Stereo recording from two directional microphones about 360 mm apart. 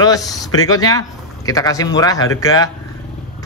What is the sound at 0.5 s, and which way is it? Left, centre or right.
Speech, centre.